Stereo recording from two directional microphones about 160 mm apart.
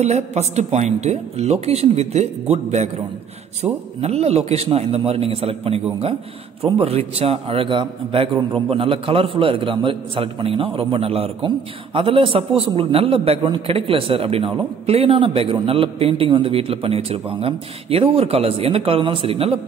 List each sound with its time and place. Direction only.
0.0 s a man's voice: 45° right (ahead or behind)